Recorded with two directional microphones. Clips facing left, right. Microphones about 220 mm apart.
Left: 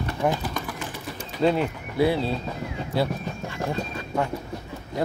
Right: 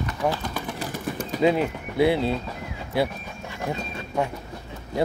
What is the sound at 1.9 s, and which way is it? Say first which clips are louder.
Speech: right 2 dB; 20° right (ahead or behind).